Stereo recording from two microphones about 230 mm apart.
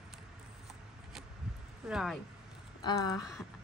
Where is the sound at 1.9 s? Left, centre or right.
Centre.